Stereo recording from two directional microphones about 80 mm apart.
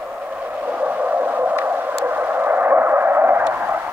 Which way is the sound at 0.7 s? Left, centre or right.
Centre.